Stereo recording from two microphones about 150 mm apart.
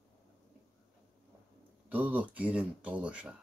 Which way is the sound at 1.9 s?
10° right (ahead or behind).